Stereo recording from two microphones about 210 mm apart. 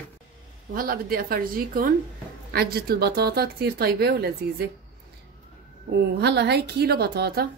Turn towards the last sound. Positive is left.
turn(degrees=-50)  # may be behind; listen again after turning